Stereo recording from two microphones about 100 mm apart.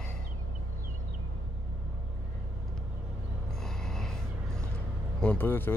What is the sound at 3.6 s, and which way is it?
Snort, 5° left (ahead or behind).